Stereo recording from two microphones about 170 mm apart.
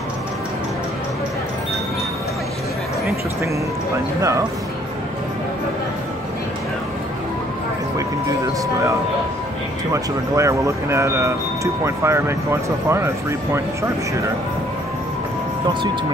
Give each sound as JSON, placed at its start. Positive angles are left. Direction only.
{"t": 4.2, "sound": "speech", "side_deg": -20}
{"t": 9.9, "sound": "speech", "side_deg": -20}